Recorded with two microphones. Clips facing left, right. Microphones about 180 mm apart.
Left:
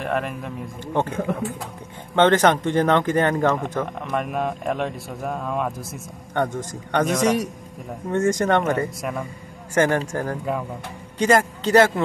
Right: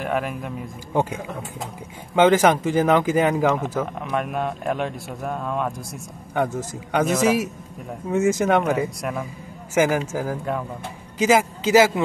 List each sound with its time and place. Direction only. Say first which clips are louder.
0.0 s a man's voice: even; centre (ahead or behind)